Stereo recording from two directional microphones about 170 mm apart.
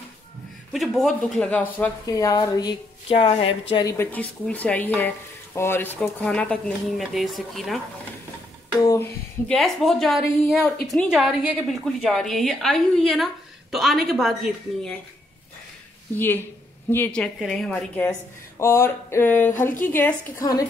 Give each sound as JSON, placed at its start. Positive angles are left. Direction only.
{"t": 0.7, "sound": "a woman's voice", "side_deg": 0}
{"t": 2.0, "sound": "a woman's voice", "side_deg": 20}
{"t": 3.9, "sound": "speech", "side_deg": 10}
{"t": 8.7, "sound": "a sound", "side_deg": 20}
{"t": 9.5, "sound": "a woman's voice", "side_deg": 5}
{"t": 16.9, "sound": "speech", "side_deg": 10}